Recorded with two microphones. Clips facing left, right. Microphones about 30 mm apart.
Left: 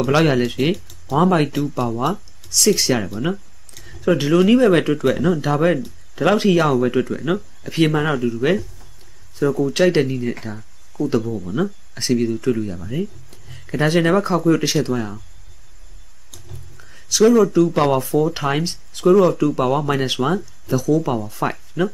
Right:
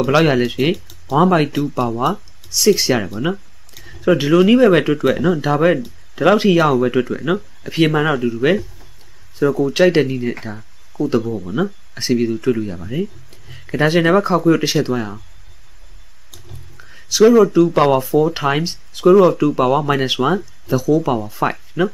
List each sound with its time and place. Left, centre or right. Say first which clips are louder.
0.0 s speech: right 2 dB; centre
16.3 s a sound: right 1 dB; centre
18.0 s speech: right 3 dB; centre